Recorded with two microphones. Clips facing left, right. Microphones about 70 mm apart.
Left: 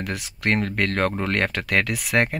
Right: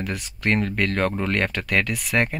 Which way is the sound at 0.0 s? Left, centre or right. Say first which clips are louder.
Even; left.